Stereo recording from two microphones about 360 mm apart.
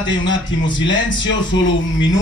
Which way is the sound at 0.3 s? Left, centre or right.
Left.